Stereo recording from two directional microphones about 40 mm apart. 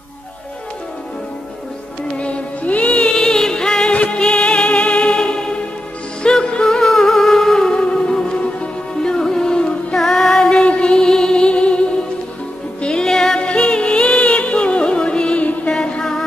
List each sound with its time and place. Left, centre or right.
2.1 s music: left
3.2 s music: centre
3.9 s music: left
4.2 s music: centre
4.5 s music: left
6.5 s music: centre
9.9 s music: centre
10.4 s music: left
13.0 s music: centre
13.4 s music: left
16.0 s music: centre